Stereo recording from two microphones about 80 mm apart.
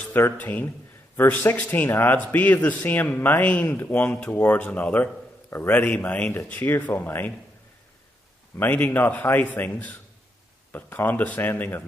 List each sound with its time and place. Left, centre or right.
0.1 s a man's voice: left
8.5 s a man's voice: left